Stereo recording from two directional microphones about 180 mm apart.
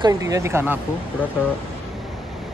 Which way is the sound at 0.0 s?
20° right (ahead or behind).